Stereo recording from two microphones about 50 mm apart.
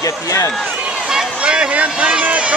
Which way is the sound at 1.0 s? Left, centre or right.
Centre.